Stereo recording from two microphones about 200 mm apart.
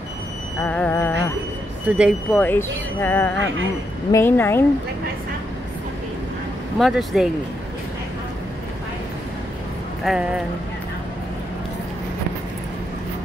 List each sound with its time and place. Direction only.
0.6 s music: 10° left (ahead or behind)
1.9 s speech: 5° right (ahead or behind)
2.3 s speech: 10° left (ahead or behind)
6.8 s speech: centre (ahead or behind)
10.0 s speech: 5° right (ahead or behind)